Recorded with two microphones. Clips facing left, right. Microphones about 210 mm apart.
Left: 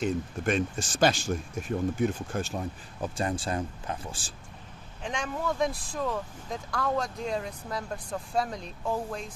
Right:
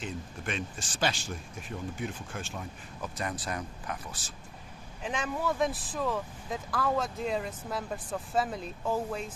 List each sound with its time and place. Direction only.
0.0 s speech: 45° left (ahead or behind); by 4.3 s 25° left (ahead or behind)
5.0 s speech: 5° right (ahead or behind)